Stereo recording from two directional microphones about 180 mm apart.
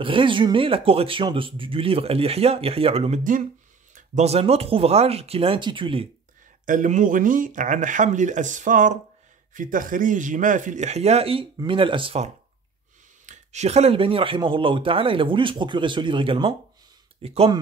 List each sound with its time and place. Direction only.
0.0 s speech: 30° right (ahead or behind)
6.6 s speech: 45° right (ahead or behind)
13.2 s speech: 40° right (ahead or behind)